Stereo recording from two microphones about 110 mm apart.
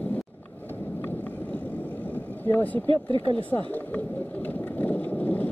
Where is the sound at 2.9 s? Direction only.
50° right (ahead or behind).